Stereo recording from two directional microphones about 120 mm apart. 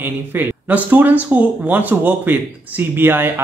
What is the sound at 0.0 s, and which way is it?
Speech, 15° right (ahead or behind).